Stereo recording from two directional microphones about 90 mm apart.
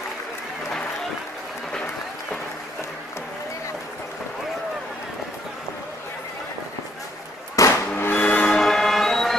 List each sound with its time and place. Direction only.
7.6 s vehicle: 40° left (ahead or behind)
8.0 s music: 20° left (ahead or behind)
8.5 s music: 5° left (ahead or behind)